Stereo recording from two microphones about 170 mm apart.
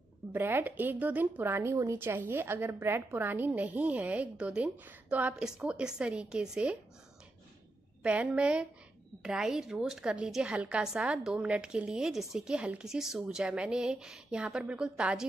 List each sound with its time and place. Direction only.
0.3 s speech: 10° right (ahead or behind)
8.0 s a woman's voice: 5° right (ahead or behind)